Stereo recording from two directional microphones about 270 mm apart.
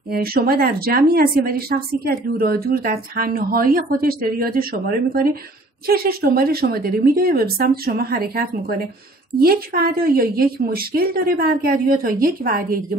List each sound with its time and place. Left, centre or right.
0.1 s speech: right